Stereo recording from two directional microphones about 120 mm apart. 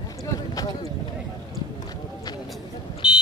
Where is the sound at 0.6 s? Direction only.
30° left (ahead or behind).